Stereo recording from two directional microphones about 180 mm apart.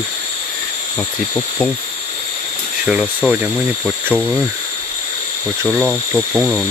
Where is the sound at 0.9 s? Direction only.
25° left (ahead or behind).